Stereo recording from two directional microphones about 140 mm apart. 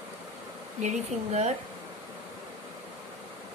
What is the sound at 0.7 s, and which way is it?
Speech, 55° right (ahead or behind).